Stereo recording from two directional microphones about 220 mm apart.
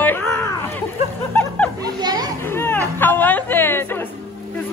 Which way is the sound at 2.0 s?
20° right (ahead or behind).